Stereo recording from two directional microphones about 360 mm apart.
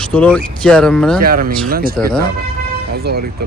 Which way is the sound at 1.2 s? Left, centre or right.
Right.